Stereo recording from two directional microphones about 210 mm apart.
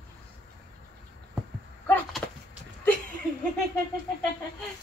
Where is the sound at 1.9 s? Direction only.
10° left (ahead or behind).